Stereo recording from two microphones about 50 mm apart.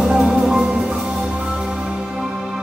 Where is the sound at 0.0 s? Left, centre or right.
Centre.